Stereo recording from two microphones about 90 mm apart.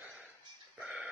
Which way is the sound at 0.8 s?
10° right (ahead or behind).